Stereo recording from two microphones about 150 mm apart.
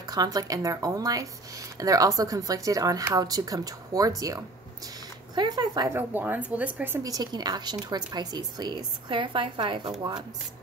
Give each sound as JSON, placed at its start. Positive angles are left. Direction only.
{"t": 0.0, "sound": "speech", "side_deg": -25}
{"t": 5.9, "sound": "a woman's voice", "side_deg": -15}
{"t": 7.0, "sound": "speech", "side_deg": -25}